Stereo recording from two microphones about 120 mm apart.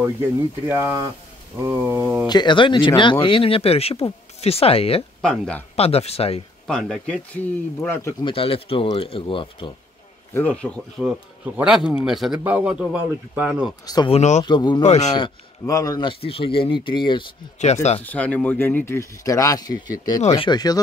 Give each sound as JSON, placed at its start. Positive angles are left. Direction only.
{"t": 0.7, "sound": "a sound", "side_deg": -20}
{"t": 2.2, "sound": "speech", "side_deg": 40}
{"t": 5.2, "sound": "a man's voice", "side_deg": 5}
{"t": 5.8, "sound": "speech", "side_deg": 55}
{"t": 6.7, "sound": "a man's voice", "side_deg": 5}
{"t": 8.2, "sound": "speech", "side_deg": 50}
{"t": 10.3, "sound": "a man's voice", "side_deg": 10}
{"t": 11.5, "sound": "a man's voice", "side_deg": -5}
{"t": 14.0, "sound": "speech", "side_deg": 65}
{"t": 14.4, "sound": "speech", "side_deg": 40}
{"t": 14.8, "sound": "speech", "side_deg": 70}
{"t": 15.6, "sound": "speech", "side_deg": 30}
{"t": 16.1, "sound": "speech", "side_deg": 50}
{"t": 18.0, "sound": "speech", "side_deg": 10}